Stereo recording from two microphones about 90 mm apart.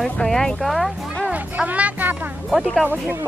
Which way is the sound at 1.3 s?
15° right (ahead or behind).